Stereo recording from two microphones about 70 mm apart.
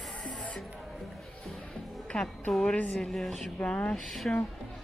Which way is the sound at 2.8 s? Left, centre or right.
Left.